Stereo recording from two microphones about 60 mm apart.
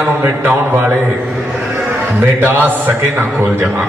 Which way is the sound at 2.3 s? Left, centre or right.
Right.